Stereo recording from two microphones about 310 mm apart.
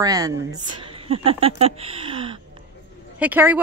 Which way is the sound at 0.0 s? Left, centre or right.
Centre.